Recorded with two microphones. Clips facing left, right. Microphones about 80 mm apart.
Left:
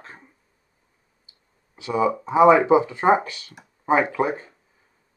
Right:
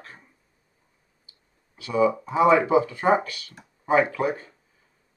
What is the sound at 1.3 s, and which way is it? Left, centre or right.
Speech, left.